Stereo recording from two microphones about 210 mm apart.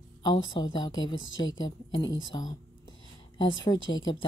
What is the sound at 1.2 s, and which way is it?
Speech, 65° left (ahead or behind).